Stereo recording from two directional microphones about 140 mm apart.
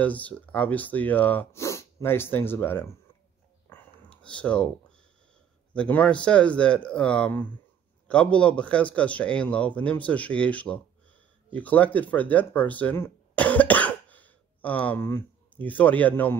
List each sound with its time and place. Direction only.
0.0 s speech: 10° left (ahead or behind)
3.6 s a sound: 10° left (ahead or behind)
5.7 s speech: 10° left (ahead or behind)